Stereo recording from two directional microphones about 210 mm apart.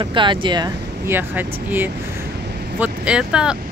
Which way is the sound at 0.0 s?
20° right (ahead or behind).